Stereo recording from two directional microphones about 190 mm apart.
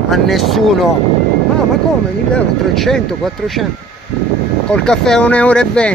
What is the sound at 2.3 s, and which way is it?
Speech, 5° left (ahead or behind).